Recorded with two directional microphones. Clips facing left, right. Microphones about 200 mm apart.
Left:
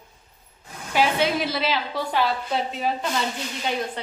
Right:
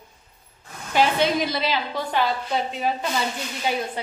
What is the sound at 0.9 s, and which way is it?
A woman's voice, 5° left (ahead or behind).